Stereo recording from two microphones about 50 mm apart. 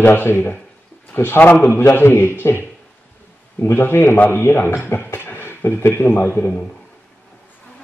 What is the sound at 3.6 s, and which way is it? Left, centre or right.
A man's voice, left.